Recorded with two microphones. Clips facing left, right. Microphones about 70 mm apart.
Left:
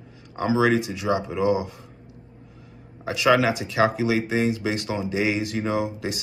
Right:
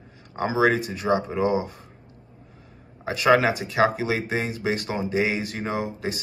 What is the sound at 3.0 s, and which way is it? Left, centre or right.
Speech, right.